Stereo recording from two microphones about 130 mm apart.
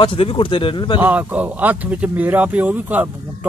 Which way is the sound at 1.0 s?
10° right (ahead or behind).